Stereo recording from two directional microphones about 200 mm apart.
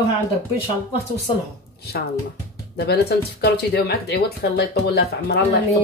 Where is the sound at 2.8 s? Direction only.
55° left (ahead or behind).